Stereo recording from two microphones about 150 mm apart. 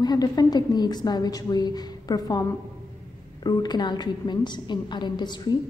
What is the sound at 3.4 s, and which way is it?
A woman's voice, 30° left (ahead or behind).